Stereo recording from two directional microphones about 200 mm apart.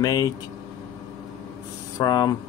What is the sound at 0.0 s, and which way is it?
Speech, 20° left (ahead or behind).